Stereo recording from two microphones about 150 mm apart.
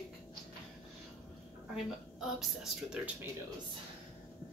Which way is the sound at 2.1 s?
5° right (ahead or behind).